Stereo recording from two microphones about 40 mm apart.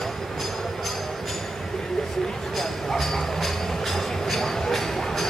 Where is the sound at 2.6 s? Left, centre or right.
Centre.